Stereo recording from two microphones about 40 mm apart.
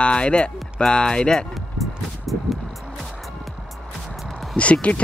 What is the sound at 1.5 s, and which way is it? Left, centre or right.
Music, centre.